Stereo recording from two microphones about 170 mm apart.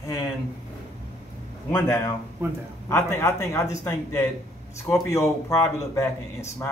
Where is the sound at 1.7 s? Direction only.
20° left (ahead or behind).